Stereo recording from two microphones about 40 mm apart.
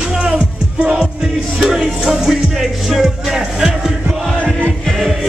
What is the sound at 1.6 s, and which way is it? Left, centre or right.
Music, centre.